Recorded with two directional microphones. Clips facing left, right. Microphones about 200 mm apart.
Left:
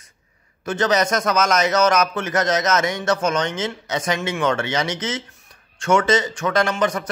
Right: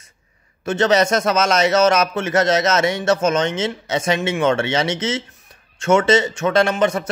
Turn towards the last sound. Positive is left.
turn(degrees=-25)  # may be behind; listen again after turning